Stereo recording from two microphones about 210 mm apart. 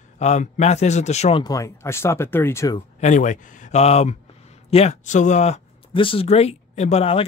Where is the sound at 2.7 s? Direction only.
35° left (ahead or behind).